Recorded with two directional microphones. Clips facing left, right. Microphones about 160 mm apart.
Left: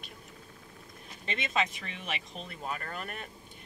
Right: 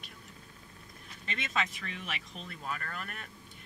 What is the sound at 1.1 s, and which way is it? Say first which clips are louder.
Speech: left 4 dB; 20° left (ahead or behind).